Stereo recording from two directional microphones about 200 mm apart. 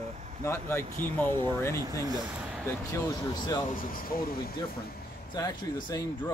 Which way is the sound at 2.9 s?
15° left (ahead or behind).